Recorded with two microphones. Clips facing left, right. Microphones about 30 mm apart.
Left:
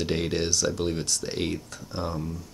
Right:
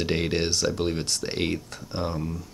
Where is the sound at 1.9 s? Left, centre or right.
Right.